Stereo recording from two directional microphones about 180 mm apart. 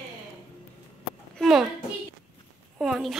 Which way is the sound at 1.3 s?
Centre (ahead or behind).